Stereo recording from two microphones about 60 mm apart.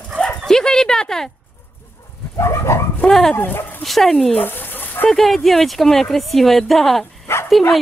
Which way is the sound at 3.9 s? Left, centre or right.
Centre.